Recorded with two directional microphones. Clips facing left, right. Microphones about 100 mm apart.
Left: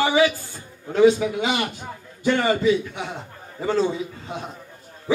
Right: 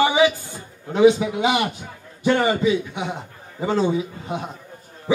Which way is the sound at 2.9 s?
15° right (ahead or behind).